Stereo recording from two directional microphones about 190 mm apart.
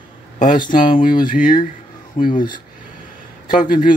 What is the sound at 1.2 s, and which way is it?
Speech, 45° left (ahead or behind).